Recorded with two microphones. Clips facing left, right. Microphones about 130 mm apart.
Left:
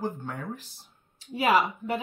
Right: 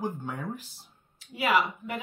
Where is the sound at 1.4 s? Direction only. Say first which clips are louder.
Left 2 dB; 35° left (ahead or behind).